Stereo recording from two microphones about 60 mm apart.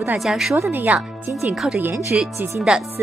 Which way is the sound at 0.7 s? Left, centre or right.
Right.